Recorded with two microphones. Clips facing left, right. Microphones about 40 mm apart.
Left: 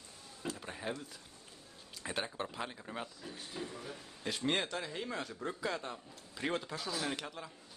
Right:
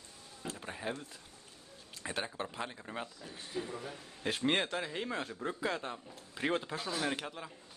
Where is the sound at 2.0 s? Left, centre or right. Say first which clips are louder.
Even; centre.